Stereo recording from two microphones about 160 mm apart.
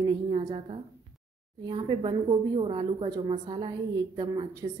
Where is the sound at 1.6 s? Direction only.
35° right (ahead or behind).